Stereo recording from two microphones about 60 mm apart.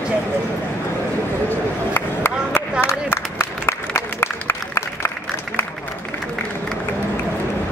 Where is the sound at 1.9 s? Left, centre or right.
Left.